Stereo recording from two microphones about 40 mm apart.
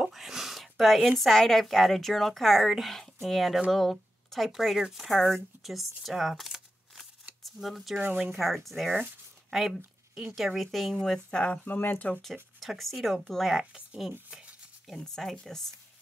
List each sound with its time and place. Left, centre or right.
0.1 s a sound: centre
1.2 s a woman's voice: centre
11.6 s speech: left
12.5 s speech: centre
13.0 s speech: centre
13.3 s speech: centre
14.9 s a woman's voice: centre